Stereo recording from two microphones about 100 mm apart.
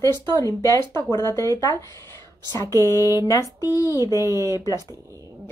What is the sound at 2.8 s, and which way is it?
Speech, 30° left (ahead or behind).